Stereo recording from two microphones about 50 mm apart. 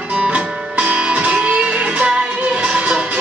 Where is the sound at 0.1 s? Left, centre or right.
Right.